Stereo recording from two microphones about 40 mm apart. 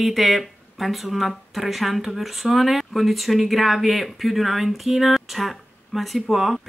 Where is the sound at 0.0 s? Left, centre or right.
Centre.